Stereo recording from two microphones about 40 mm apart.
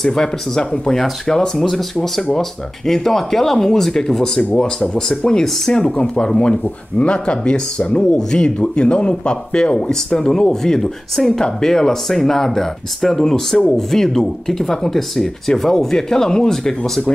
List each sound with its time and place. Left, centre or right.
0.0 s speech: centre
0.9 s speech: centre